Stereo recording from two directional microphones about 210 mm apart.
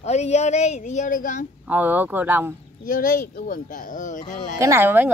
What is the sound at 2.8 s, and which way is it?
Speech, 40° left (ahead or behind).